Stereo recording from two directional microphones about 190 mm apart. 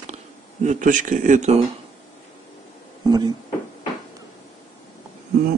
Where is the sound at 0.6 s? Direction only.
40° right (ahead or behind).